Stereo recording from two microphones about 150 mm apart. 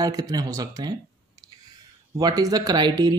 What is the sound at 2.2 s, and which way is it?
Speech, 25° right (ahead or behind).